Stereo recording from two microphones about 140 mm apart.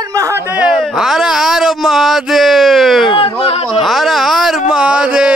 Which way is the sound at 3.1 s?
40° left (ahead or behind).